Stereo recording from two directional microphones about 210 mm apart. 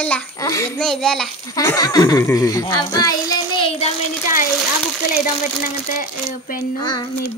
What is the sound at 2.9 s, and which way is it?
Child singing, 20° left (ahead or behind).